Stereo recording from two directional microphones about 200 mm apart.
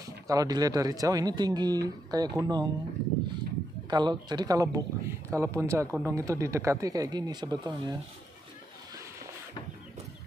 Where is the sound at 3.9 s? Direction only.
20° right (ahead or behind).